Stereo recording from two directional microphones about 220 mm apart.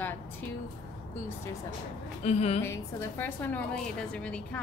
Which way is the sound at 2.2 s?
30° left (ahead or behind).